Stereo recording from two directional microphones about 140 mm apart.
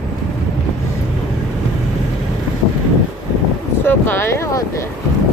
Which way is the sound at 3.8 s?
15° left (ahead or behind).